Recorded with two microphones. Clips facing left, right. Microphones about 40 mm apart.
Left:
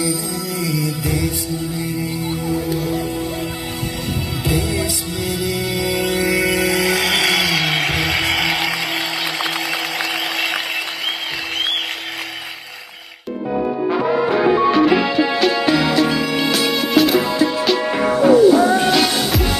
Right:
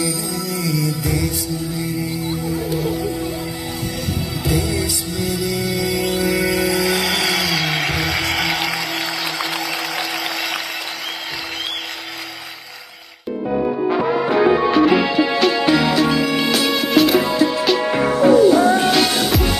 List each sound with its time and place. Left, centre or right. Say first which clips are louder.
0.0 s music: left 1 dB; centre
4.5 s music: even; centre
6.2 s music: left 1 dB; left
13.9 s music: left 1 dB; centre